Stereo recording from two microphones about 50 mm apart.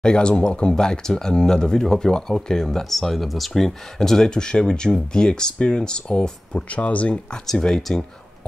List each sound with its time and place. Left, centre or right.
0.0 s speech: centre
6.7 s speech: left
7.5 s speech: centre